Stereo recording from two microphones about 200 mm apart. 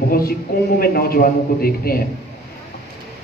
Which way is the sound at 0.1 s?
50° left (ahead or behind).